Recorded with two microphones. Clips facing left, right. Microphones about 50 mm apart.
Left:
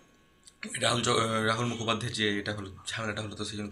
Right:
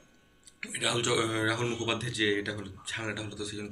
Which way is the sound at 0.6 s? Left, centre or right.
Centre.